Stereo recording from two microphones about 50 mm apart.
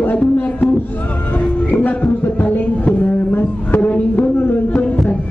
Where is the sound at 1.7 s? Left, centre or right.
Left.